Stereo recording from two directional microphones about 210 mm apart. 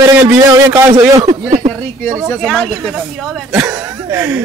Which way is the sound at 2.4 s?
5° left (ahead or behind).